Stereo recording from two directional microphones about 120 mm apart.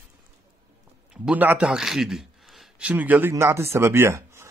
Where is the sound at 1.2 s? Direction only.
15° right (ahead or behind).